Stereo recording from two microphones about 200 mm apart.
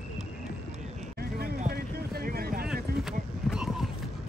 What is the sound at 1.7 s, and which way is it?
Vehicle, 50° right (ahead or behind).